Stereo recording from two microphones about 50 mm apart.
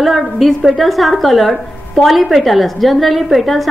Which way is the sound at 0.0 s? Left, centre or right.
Centre.